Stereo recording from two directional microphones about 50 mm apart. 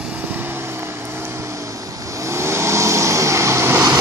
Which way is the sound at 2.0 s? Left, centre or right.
Right.